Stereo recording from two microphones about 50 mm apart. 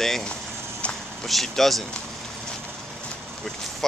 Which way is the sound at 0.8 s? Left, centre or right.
Left.